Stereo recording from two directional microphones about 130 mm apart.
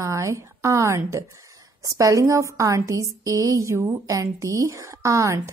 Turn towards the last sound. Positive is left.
turn(degrees=-25)  # may be behind; listen again after turning